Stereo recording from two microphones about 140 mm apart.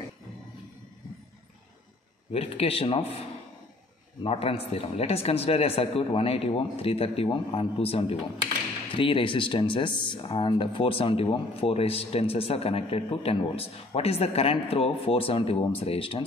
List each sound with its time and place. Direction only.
2.3 s a man's voice: 45° left (ahead or behind)